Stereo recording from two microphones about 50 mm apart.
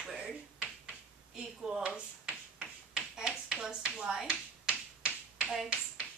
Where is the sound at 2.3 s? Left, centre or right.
Right.